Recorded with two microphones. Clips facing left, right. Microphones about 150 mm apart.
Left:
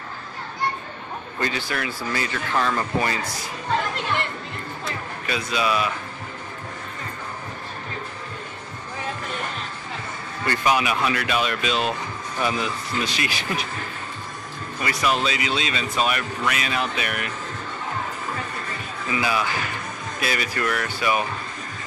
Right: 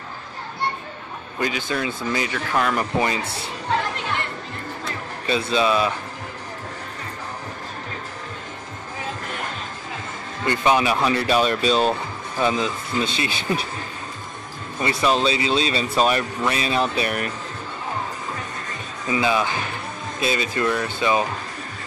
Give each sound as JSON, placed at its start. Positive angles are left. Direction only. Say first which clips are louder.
{"t": 1.4, "sound": "speech", "louder": "right 3 dB", "side_deg": -20}
{"t": 2.3, "sound": "speech", "louder": "even", "side_deg": -10}
{"t": 5.2, "sound": "speech", "louder": "right 5 dB", "side_deg": -30}
{"t": 10.4, "sound": "speech", "louder": "right 3 dB", "side_deg": -25}
{"t": 14.8, "sound": "speech", "louder": "right 3 dB", "side_deg": -25}
{"t": 19.0, "sound": "speech", "louder": "right 3 dB", "side_deg": -25}